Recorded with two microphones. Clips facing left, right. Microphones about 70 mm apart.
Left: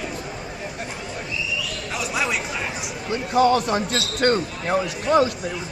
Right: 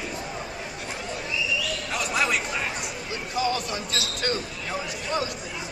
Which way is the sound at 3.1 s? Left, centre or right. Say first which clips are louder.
Left 9 dB; left.